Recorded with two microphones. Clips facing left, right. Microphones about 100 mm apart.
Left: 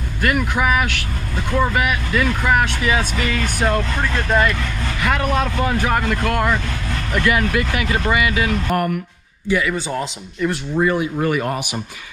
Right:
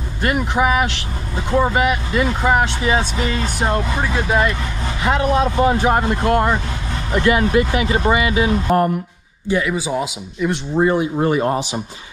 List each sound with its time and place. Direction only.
0.2 s speech: 25° right (ahead or behind); by 4.5 s 10° right (ahead or behind)
4.5 s speech: 25° right (ahead or behind)
9.6 s speech: 5° right (ahead or behind)
10.8 s speech: 30° right (ahead or behind)